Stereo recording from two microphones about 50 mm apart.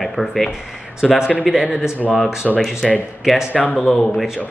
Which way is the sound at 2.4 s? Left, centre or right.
Centre.